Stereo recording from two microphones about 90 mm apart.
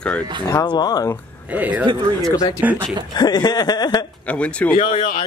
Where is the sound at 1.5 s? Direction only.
15° right (ahead or behind).